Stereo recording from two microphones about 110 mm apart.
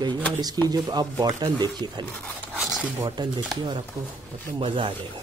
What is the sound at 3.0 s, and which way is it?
Speech, 40° right (ahead or behind).